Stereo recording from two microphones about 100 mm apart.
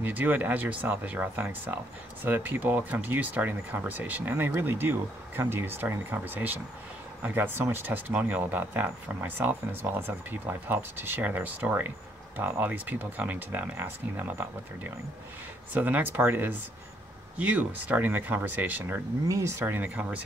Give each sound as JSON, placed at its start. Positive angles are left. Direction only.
{"t": 0.0, "sound": "speech", "side_deg": -15}
{"t": 19.2, "sound": "speech", "side_deg": -30}